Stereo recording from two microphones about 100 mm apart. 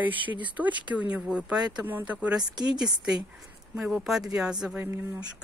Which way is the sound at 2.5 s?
45° right (ahead or behind).